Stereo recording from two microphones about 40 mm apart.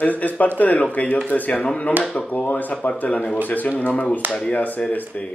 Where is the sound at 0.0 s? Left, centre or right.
Left.